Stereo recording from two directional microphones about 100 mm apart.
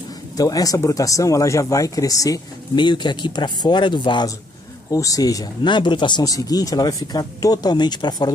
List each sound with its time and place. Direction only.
0.4 s speech: 40° left (ahead or behind)
2.8 s speech: 50° left (ahead or behind)
4.9 s speech: 35° left (ahead or behind); by 6.2 s 50° left (ahead or behind)
6.2 s speech: 35° left (ahead or behind)